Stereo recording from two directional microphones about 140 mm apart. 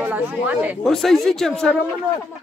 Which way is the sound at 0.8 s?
Centre (ahead or behind).